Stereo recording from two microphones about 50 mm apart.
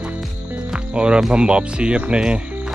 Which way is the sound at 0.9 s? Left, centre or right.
Centre.